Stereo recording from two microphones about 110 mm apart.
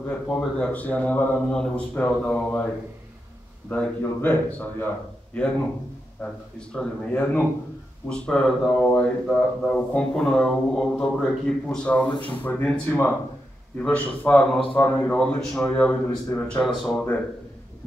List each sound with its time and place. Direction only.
0.3 s a man's voice: 15° left (ahead or behind)
3.7 s a man's voice: 15° left (ahead or behind)